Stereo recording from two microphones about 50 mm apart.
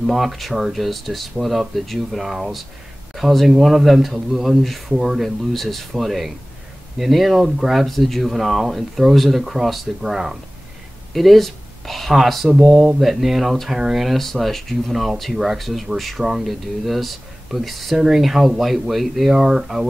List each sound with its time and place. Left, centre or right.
0.0 s speech: centre